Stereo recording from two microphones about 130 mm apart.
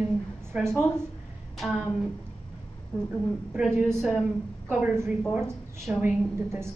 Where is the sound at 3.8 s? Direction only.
Centre (ahead or behind).